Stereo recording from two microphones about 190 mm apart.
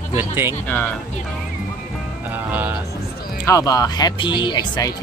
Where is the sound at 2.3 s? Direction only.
10° right (ahead or behind).